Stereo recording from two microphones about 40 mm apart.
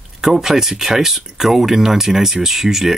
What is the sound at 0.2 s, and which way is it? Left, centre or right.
Speech, centre.